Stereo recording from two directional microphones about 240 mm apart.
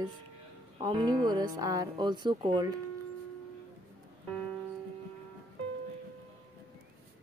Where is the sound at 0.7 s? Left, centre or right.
Centre.